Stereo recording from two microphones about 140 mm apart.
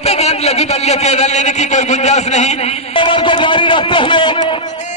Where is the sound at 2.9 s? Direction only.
35° left (ahead or behind).